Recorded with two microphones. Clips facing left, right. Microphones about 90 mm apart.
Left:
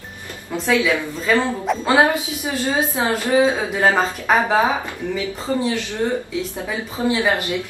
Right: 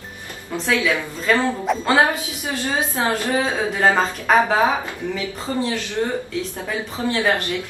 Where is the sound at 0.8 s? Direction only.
5° left (ahead or behind).